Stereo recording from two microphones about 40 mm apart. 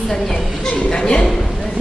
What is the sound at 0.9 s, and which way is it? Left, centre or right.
Speech, left.